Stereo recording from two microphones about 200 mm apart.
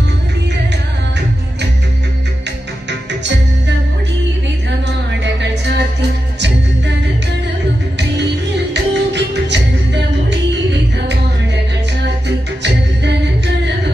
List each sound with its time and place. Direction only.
2.9 s music: 60° right (ahead or behind)
5.2 s music: 60° right (ahead or behind)
8.7 s music: 60° right (ahead or behind)
12.3 s music: 60° right (ahead or behind)